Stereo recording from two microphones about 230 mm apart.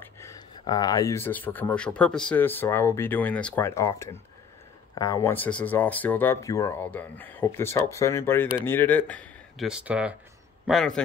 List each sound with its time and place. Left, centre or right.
0.0 s speech: centre